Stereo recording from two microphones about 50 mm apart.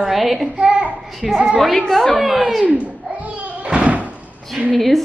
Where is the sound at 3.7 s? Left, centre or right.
Right.